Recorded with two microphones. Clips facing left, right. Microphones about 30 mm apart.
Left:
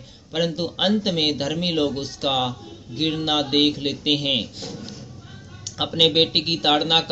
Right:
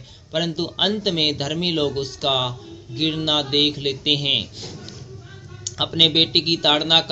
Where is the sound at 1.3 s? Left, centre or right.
Right.